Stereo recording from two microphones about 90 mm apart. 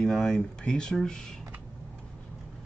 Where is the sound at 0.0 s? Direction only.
5° left (ahead or behind).